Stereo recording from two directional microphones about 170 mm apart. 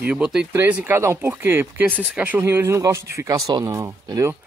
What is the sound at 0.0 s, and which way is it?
Speech, 5° right (ahead or behind).